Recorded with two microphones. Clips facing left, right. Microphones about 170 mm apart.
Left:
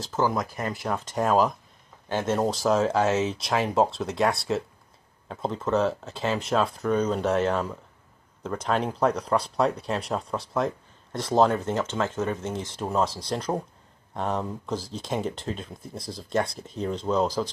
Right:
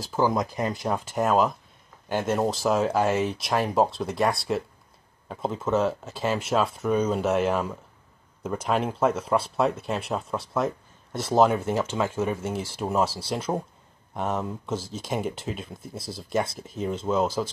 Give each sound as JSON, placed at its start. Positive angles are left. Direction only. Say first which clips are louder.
{"t": 0.0, "sound": "speech", "louder": "right 2 dB", "side_deg": -10}
{"t": 1.1, "sound": "speech", "louder": "even", "side_deg": 0}